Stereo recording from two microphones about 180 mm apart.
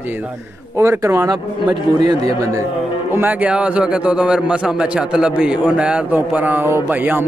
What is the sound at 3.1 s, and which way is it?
A man's voice, 10° right (ahead or behind).